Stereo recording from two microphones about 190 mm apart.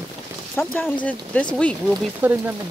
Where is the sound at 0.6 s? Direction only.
10° left (ahead or behind).